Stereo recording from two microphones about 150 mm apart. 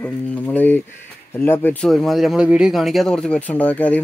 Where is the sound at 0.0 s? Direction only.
10° left (ahead or behind).